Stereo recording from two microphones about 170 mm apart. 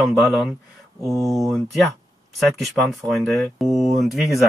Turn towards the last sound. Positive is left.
turn(degrees=0)  # may be behind; listen again after turning